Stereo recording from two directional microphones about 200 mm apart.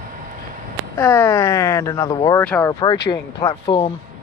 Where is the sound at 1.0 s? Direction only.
10° left (ahead or behind).